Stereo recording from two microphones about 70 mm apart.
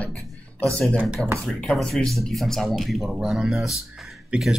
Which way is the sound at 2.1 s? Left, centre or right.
Centre.